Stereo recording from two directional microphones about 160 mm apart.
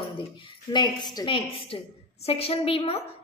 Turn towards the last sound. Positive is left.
turn(degrees=35)  # may be behind; listen again after turning